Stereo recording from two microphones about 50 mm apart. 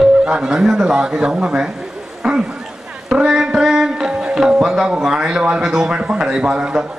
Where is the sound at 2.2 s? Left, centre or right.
Centre.